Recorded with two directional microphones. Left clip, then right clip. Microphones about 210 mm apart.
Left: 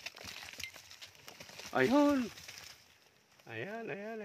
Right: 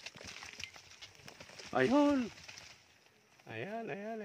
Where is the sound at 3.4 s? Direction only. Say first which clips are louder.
Even; 5° left (ahead or behind).